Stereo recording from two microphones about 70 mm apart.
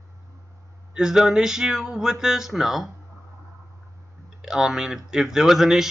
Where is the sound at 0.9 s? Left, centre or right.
Centre.